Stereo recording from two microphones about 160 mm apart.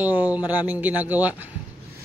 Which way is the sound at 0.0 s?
10° right (ahead or behind).